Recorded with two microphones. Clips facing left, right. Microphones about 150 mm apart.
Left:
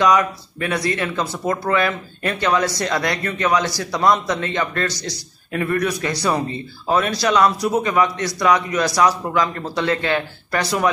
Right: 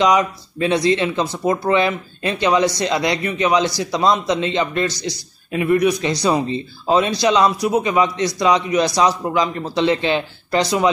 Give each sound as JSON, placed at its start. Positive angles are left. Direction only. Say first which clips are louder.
{"t": 0.0, "sound": "speech", "louder": "right 1 dB", "side_deg": -20}